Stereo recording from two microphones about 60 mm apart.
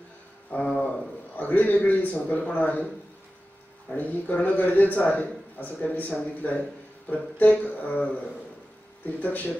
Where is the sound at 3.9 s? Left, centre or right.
Left.